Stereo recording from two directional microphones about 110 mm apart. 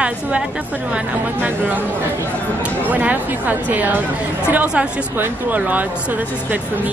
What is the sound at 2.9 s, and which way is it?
Speech, 15° right (ahead or behind).